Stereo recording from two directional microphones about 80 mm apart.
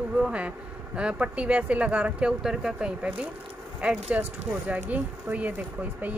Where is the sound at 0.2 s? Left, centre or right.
Centre.